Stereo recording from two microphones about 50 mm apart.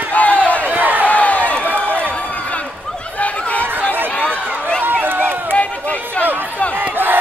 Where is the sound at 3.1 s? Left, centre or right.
Left.